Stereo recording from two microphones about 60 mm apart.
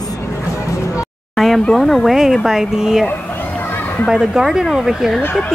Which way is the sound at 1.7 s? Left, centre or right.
Centre.